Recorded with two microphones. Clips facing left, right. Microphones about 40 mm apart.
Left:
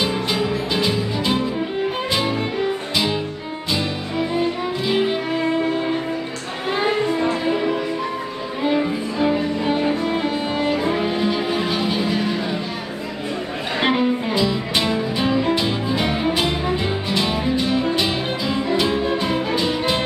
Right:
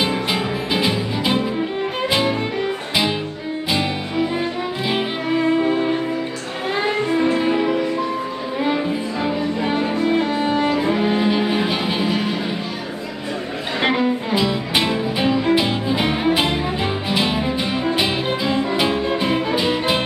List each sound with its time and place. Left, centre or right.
0.3 s music: centre
4.4 s music: centre
7.1 s music: centre
9.6 s music: centre
13.7 s music: centre
14.3 s music: centre